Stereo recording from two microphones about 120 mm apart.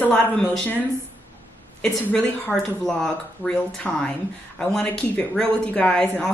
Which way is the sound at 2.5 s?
5° left (ahead or behind).